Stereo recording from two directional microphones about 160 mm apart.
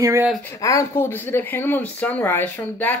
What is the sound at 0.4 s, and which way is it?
Speech, 15° left (ahead or behind).